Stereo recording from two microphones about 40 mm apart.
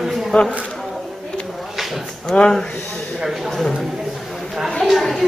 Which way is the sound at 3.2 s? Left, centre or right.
Centre.